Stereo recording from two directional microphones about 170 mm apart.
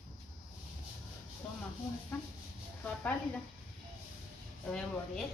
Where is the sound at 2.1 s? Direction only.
15° left (ahead or behind).